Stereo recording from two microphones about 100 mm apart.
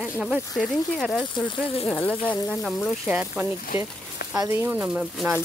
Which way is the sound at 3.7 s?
60° left (ahead or behind).